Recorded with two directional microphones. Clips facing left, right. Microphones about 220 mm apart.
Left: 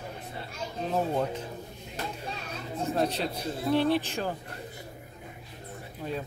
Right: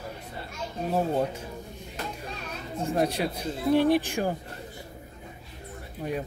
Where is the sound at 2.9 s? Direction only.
10° right (ahead or behind).